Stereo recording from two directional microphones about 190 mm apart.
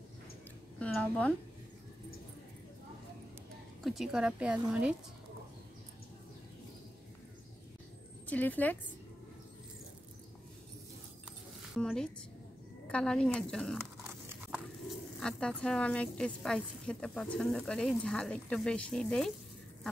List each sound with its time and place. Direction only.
0.7 s a woman's voice: 5° left (ahead or behind)
3.8 s a woman's voice: centre (ahead or behind)
8.3 s speech: 10° left (ahead or behind)
11.7 s a woman's voice: 5° left (ahead or behind)
15.1 s a woman's voice: 5° left (ahead or behind)